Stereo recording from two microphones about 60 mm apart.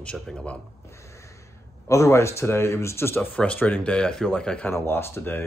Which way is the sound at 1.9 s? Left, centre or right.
Left.